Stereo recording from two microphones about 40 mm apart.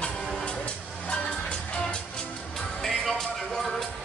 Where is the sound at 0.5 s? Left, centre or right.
Left.